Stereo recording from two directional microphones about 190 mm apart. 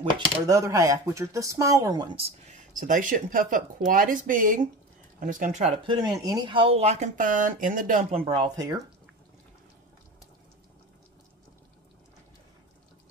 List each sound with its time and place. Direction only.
0.5 s speech: 15° right (ahead or behind)
2.1 s speech: 35° right (ahead or behind)
5.9 s speech: 20° right (ahead or behind); by 8.2 s 45° right (ahead or behind)
8.2 s speech: 30° right (ahead or behind)